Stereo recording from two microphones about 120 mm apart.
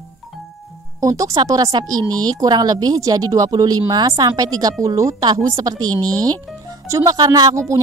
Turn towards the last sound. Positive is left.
turn(degrees=-25)  # may be behind; listen again after turning